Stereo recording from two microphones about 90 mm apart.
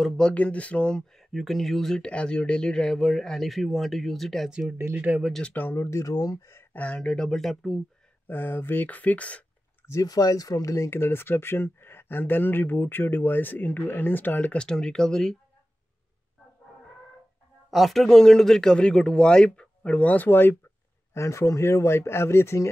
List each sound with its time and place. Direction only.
0.0 s a man's voice: 10° left (ahead or behind)
1.3 s speech: centre (ahead or behind)
4.5 s speech: 10° right (ahead or behind)
4.7 s speech: 25° right (ahead or behind)
5.4 s speech: 20° left (ahead or behind)
6.7 s speech: 15° left (ahead or behind)
7.0 s speech: 5° left (ahead or behind)
8.3 s speech: 20° left (ahead or behind)
9.8 s speech: 40° left (ahead or behind); by 15.3 s 5° left (ahead or behind)
17.6 s a man's voice: centre (ahead or behind); by 22.7 s 30° left (ahead or behind)